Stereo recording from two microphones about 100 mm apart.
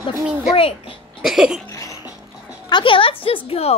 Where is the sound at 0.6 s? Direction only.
70° left (ahead or behind).